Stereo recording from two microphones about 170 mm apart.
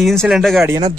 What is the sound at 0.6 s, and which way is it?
Speech, 20° right (ahead or behind).